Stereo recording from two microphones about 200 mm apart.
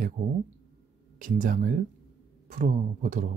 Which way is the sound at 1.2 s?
40° right (ahead or behind).